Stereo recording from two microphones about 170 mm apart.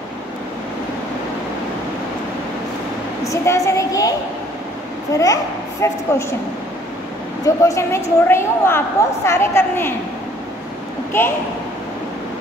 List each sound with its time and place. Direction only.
3.3 s a child's voice: 15° left (ahead or behind)
5.1 s a child's voice: 20° left (ahead or behind)
7.4 s a woman's voice: 20° left (ahead or behind)
11.1 s a woman's voice: 15° left (ahead or behind)